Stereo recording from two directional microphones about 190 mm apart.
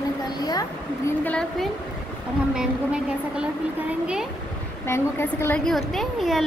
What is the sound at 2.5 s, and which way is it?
Speech, 5° right (ahead or behind).